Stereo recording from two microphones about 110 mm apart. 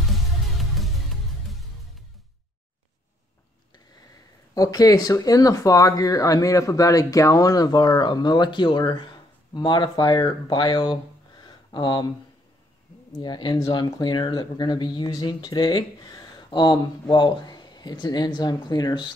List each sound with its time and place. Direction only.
0.0 s music: centre (ahead or behind)
4.6 s speech: 35° left (ahead or behind)
13.2 s speech: 45° left (ahead or behind)